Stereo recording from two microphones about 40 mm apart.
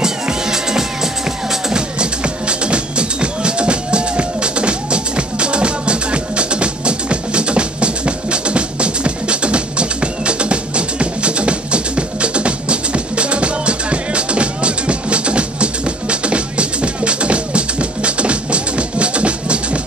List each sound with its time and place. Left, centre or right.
0.0 s music: centre